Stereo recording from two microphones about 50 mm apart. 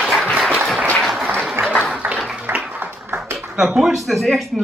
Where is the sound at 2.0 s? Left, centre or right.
Right.